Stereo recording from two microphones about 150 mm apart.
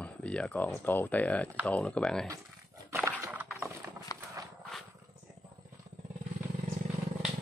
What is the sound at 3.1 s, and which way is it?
Horse, 15° right (ahead or behind).